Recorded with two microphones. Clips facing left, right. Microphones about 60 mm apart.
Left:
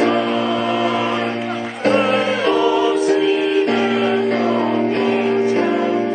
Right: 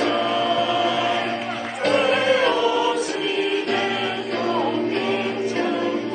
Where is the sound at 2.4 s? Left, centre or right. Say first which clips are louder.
Left 4 dB; left.